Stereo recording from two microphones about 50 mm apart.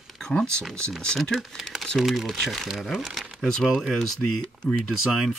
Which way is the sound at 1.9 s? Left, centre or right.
Centre.